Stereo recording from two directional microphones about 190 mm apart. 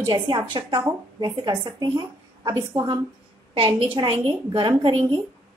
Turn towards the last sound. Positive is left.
turn(degrees=-25)  # may be behind; listen again after turning